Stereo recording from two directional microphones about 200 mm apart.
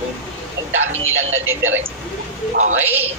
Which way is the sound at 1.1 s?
80° right.